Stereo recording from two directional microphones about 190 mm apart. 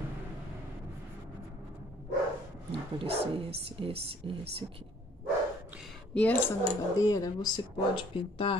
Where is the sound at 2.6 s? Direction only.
30° right (ahead or behind).